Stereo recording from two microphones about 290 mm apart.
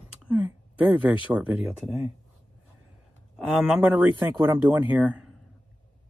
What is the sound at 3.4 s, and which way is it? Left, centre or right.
Speech, centre.